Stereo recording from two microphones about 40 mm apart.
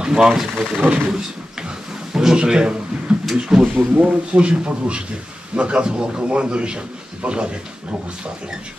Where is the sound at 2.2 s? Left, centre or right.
Centre.